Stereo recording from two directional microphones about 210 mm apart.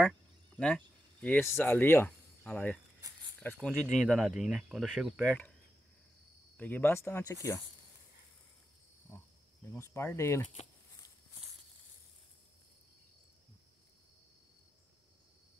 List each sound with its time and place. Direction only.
0.6 s speech: 5° left (ahead or behind)
3.0 s cricket: 15° right (ahead or behind)
3.5 s speech: centre (ahead or behind)
6.5 s speech: 10° left (ahead or behind)
9.7 s speech: 10° left (ahead or behind)
10.5 s a sound: 25° left (ahead or behind)